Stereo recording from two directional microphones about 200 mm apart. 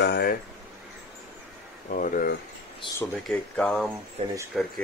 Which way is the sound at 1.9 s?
45° left (ahead or behind).